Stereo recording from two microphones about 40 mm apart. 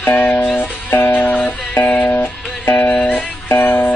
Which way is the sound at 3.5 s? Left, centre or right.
Left.